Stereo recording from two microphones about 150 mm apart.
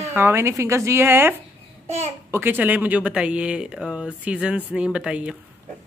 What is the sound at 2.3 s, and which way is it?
Speech, 15° right (ahead or behind).